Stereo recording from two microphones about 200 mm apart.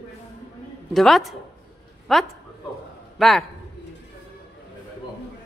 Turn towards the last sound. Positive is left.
turn(degrees=0)  # may be behind; listen again after turning